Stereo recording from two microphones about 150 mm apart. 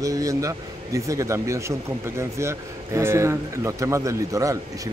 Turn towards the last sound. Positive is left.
turn(degrees=-20)  # may be behind; listen again after turning